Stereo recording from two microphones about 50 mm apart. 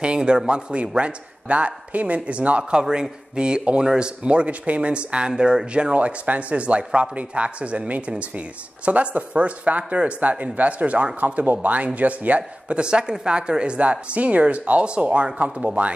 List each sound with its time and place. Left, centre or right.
0.0 s speech: centre